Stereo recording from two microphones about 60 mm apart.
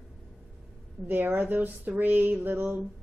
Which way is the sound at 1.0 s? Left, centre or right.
Right.